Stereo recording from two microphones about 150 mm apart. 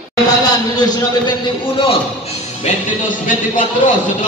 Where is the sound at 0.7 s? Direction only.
30° left (ahead or behind).